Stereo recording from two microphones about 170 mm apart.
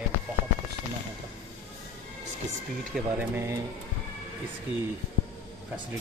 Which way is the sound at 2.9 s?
10° right (ahead or behind).